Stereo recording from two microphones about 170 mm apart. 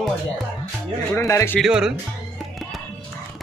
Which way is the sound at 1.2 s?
15° left (ahead or behind).